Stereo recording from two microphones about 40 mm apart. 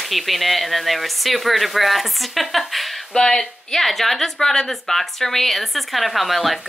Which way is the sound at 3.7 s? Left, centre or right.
Centre.